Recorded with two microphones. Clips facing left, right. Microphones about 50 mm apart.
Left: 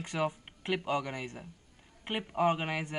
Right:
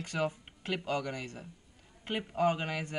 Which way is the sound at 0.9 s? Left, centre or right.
Left.